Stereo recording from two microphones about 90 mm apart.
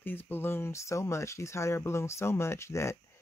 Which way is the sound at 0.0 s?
20° left (ahead or behind).